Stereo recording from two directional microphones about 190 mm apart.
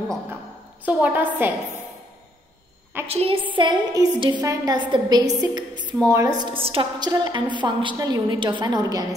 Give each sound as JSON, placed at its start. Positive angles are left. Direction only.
{"t": 0.8, "sound": "a woman's voice", "side_deg": -10}
{"t": 3.1, "sound": "a woman's voice", "side_deg": -30}